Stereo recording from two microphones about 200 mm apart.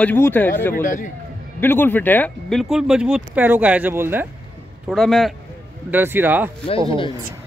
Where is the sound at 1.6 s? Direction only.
10° left (ahead or behind); by 4.3 s 10° right (ahead or behind).